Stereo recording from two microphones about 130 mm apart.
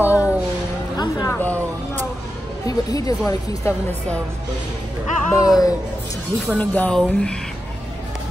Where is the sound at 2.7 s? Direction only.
30° left (ahead or behind).